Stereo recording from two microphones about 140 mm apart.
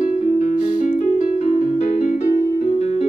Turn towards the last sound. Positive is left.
turn(degrees=50)  # may be behind; listen again after turning